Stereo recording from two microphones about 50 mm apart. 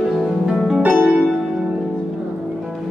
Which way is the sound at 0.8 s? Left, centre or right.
Right.